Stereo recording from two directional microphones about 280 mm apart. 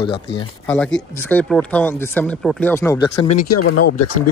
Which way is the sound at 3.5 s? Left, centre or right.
Left.